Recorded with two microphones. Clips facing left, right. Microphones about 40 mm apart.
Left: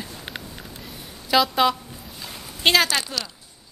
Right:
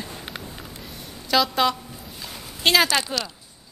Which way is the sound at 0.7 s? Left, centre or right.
Centre.